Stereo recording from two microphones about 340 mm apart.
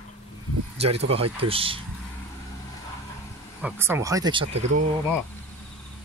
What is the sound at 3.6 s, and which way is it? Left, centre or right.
Speech, centre.